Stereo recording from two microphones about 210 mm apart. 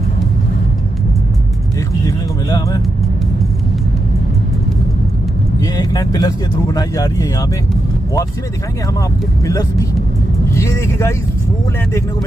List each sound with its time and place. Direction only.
2.0 s a sound: 15° left (ahead or behind)
5.6 s speech: 15° left (ahead or behind)
9.5 s speech: 15° left (ahead or behind)